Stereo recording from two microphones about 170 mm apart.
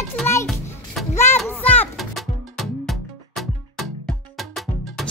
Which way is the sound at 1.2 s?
15° left (ahead or behind).